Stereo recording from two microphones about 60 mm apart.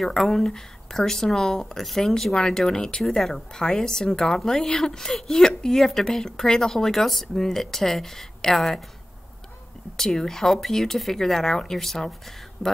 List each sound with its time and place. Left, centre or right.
0.0 s speech: centre
9.9 s speech: centre